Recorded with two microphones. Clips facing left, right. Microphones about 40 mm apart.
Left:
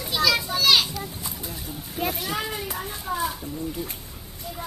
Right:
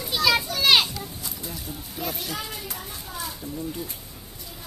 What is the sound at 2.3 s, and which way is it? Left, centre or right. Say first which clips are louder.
Children playing: left 4 dB; left.